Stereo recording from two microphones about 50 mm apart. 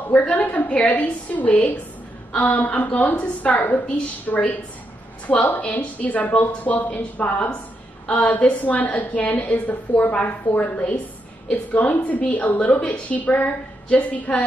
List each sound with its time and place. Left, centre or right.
0.1 s a woman's voice: left
5.6 s a woman's voice: left